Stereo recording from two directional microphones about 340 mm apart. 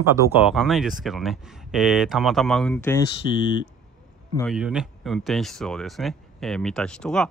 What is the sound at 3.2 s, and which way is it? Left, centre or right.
Speech, right.